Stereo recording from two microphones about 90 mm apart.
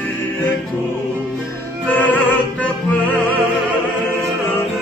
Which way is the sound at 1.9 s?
20° left (ahead or behind).